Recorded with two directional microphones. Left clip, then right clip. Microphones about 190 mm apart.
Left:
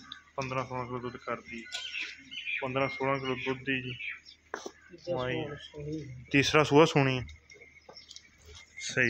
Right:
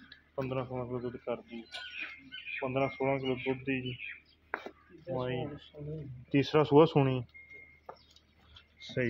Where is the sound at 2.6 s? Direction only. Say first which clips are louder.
Left 1 dB; 5° left (ahead or behind).